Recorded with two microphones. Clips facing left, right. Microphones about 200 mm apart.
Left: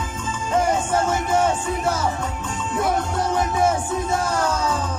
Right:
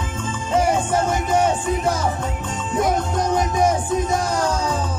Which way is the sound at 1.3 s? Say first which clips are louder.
Right 3 dB; 15° right (ahead or behind).